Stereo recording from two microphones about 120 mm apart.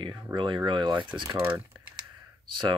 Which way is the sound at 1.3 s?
20° right (ahead or behind).